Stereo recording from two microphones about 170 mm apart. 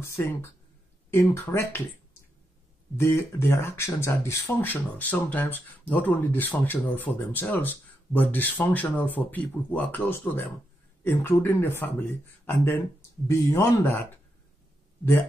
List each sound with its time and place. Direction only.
0.0 s speech: 15° left (ahead or behind)
3.0 s speech: 15° left (ahead or behind)